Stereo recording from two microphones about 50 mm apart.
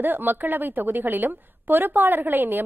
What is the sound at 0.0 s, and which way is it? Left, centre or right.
A woman's voice, right.